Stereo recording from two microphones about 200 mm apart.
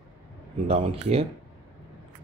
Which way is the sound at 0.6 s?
30° right (ahead or behind).